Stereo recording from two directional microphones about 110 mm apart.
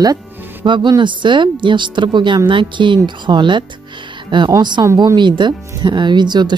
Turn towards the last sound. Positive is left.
turn(degrees=-40)  # may be behind; listen again after turning